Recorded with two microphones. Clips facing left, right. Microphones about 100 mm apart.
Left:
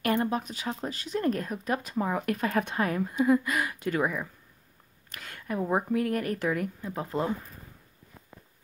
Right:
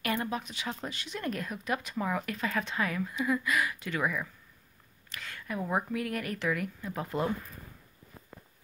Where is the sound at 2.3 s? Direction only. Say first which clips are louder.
Left 5 dB; 50° left (ahead or behind); by 7.3 s 30° left (ahead or behind).